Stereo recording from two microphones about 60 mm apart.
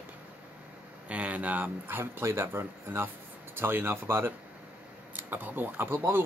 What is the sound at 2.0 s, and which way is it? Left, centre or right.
Speech, right.